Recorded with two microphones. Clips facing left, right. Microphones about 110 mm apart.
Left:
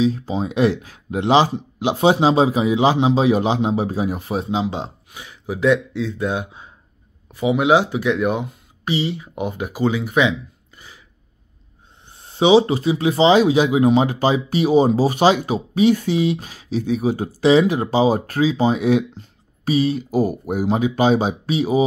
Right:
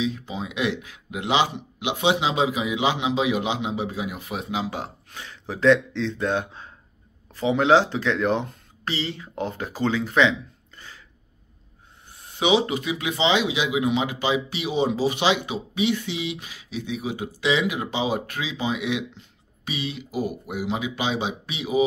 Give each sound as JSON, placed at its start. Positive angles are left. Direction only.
{"t": 0.0, "sound": "speech", "side_deg": 40}
{"t": 12.2, "sound": "speech", "side_deg": 30}